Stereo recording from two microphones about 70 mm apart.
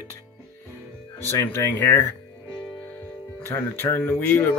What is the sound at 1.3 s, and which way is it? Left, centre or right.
Speech, left.